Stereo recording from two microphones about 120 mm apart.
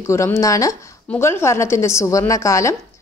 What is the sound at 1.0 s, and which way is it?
A woman's voice, 15° left (ahead or behind).